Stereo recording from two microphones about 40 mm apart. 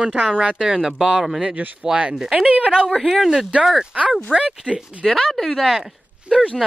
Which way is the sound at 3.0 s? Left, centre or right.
Centre.